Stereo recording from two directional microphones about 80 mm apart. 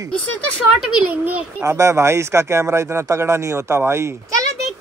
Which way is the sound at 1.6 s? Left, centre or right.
Right.